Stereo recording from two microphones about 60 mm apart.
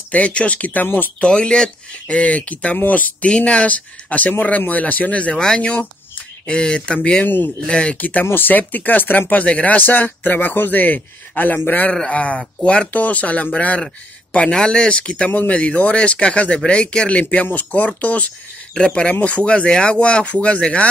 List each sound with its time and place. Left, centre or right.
0.1 s speech: left
1.2 s speech: centre
7.2 s speech: left
7.6 s speech: centre; by 11.9 s left
11.9 s speech: centre